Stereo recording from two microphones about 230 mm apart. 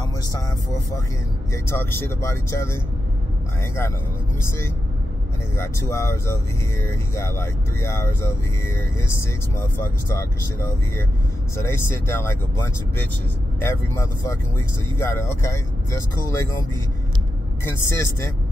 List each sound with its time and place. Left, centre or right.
1.5 s speech: centre
5.6 s speech: centre
17.6 s speech: centre